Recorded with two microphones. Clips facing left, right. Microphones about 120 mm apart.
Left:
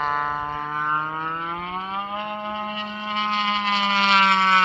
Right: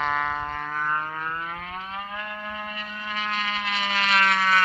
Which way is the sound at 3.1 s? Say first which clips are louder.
Left 5 dB; 25° left (ahead or behind).